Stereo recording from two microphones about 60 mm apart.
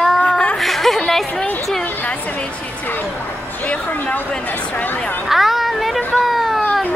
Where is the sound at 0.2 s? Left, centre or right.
Centre.